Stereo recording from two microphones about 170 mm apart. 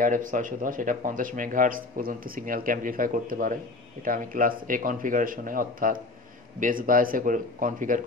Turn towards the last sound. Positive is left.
turn(degrees=-50)  # may be behind; listen again after turning